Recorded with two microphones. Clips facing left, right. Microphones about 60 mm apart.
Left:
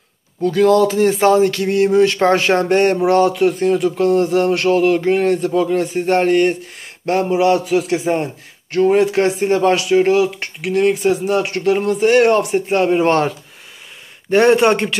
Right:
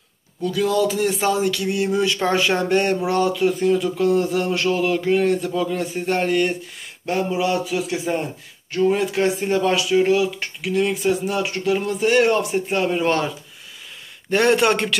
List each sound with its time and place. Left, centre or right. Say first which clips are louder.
0.4 s speech: left 7 dB; left
7.9 s a man's voice: left 6 dB; left
8.7 s speech: left 6 dB; left
14.3 s a man's voice: left 5 dB; left